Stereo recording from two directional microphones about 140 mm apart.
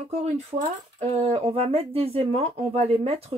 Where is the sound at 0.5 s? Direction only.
40° right (ahead or behind).